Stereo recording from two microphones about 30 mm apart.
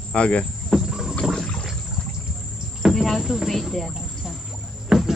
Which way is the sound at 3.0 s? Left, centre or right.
Centre.